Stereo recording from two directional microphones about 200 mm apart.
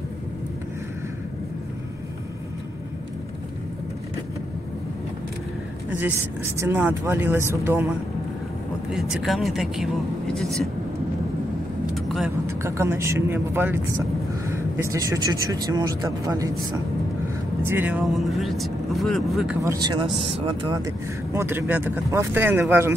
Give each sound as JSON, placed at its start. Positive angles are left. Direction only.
{"t": 5.9, "sound": "a sound", "side_deg": -5}
{"t": 6.6, "sound": "speech", "side_deg": -10}
{"t": 8.9, "sound": "speech", "side_deg": 0}
{"t": 11.9, "sound": "vehicle", "side_deg": 0}
{"t": 12.4, "sound": "speech", "side_deg": -15}
{"t": 14.8, "sound": "speech", "side_deg": -15}
{"t": 17.6, "sound": "speech", "side_deg": -10}
{"t": 19.6, "sound": "speech", "side_deg": -20}